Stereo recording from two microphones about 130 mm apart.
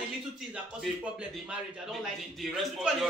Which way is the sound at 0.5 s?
10° right (ahead or behind).